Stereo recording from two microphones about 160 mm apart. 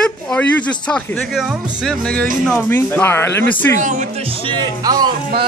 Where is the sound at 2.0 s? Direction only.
5° left (ahead or behind).